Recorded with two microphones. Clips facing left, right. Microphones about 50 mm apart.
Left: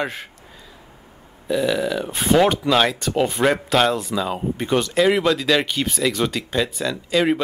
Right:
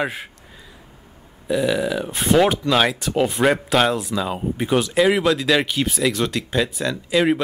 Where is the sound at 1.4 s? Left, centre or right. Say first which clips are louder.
Even; centre.